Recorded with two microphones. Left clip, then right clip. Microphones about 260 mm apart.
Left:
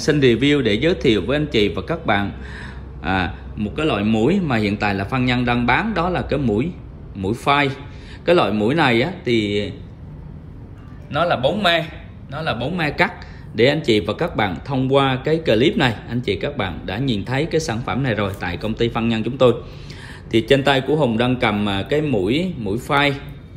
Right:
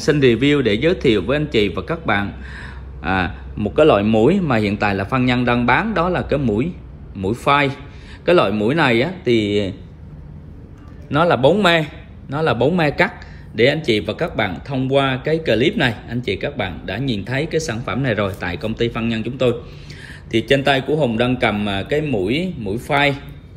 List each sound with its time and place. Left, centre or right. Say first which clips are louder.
0.0 s speech: right 1 dB; centre
11.1 s a man's voice: right 4 dB; centre